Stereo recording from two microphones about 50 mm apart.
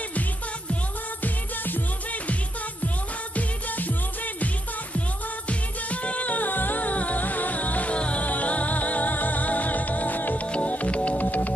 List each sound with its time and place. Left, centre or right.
0.1 s music: left
3.3 s music: left
5.5 s music: left